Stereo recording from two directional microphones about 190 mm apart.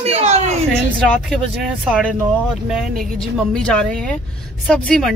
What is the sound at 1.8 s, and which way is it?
Speech, centre (ahead or behind).